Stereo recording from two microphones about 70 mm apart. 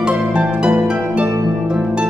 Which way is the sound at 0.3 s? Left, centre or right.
Centre.